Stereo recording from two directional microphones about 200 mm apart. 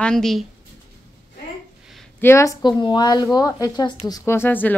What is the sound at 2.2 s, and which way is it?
A woman's voice, 15° left (ahead or behind).